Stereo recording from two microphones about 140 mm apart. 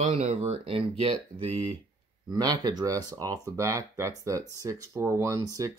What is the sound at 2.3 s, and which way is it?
Speech, 30° right (ahead or behind).